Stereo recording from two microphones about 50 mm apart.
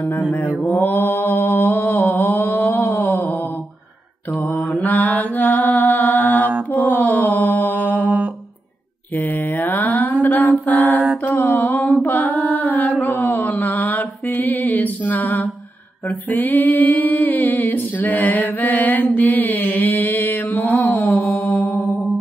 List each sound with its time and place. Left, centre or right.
0.7 s mantra: left
2.1 s a sound: left
2.9 s mantra: left
4.8 s mantra: left
9.1 s mantra: left
10.2 s a sound: left
12.0 s female singing: left
13.2 s mantra: left
16.3 s a sound: left
20.8 s mantra: left